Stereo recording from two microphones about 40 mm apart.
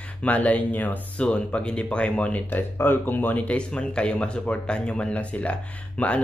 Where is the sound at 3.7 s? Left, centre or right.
Left.